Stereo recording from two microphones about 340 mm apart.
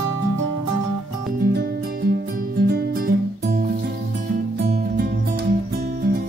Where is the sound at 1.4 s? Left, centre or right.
Right.